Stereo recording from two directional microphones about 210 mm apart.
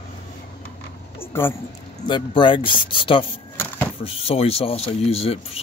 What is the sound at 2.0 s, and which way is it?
Speech, 20° left (ahead or behind).